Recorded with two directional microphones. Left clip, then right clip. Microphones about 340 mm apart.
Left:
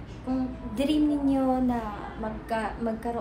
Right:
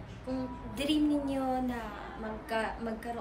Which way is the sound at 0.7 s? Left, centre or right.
Centre.